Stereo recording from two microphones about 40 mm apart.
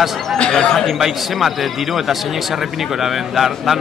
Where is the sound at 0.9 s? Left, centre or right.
Centre.